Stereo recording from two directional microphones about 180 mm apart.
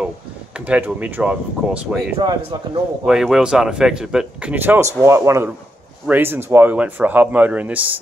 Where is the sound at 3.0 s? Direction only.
Centre (ahead or behind).